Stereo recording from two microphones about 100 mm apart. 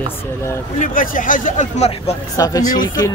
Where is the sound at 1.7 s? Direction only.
90° left.